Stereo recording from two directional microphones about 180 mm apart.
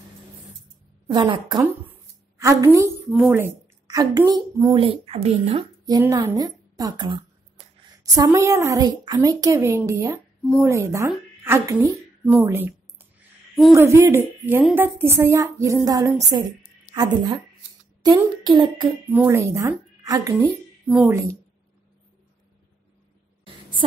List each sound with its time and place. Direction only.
1.0 s a woman's voice: 25° right (ahead or behind)
1.6 s a sound: 15° right (ahead or behind)
3.1 s a woman's voice: 5° right (ahead or behind); by 5.7 s 35° right (ahead or behind)
5.9 s a woman's voice: 20° right (ahead or behind)
13.7 s a woman's voice: 15° right (ahead or behind)
19.0 s a woman's voice: 15° right (ahead or behind)
20.8 s a woman's voice: 5° right (ahead or behind)
23.4 s a sound: 30° right (ahead or behind)